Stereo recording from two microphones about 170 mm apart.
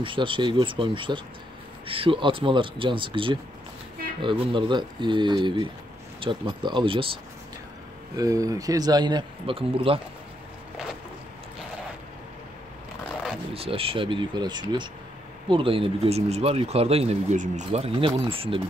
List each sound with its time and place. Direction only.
0.0 s speech: 30° right (ahead or behind)
8.2 s speech: 20° right (ahead or behind)
13.5 s speech: 35° right (ahead or behind)